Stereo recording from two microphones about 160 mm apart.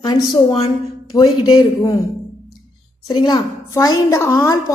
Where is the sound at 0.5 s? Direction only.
40° left (ahead or behind).